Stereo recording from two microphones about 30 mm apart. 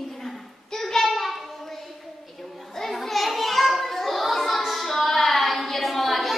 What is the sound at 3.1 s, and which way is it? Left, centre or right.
Children playing, centre.